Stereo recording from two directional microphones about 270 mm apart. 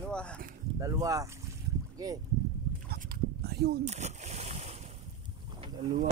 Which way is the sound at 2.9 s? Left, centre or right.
Right.